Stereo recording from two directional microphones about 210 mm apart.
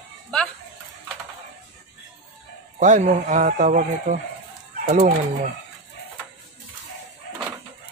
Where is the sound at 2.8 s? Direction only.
35° right (ahead or behind).